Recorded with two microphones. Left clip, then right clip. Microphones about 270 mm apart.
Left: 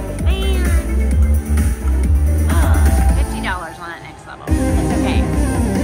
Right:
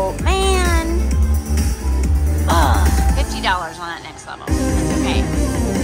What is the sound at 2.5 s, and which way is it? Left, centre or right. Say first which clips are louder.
Music: right 6 dB; centre.